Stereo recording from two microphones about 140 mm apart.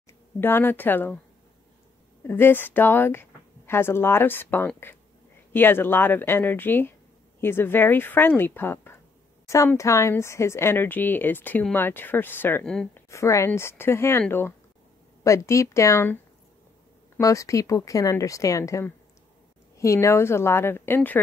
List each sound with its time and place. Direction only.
0.4 s speech: 15° left (ahead or behind)
2.2 s speech: 15° left (ahead or behind)
12.6 s speech: 5° left (ahead or behind)
13.1 s speech: 20° left (ahead or behind)
15.2 s speech: 20° left (ahead or behind)
17.2 s speech: 25° left (ahead or behind)